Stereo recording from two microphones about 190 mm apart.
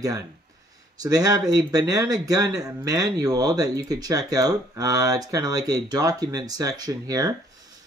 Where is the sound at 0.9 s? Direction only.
20° right (ahead or behind).